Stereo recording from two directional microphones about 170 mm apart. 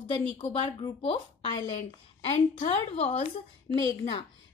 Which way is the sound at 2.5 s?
40° left (ahead or behind).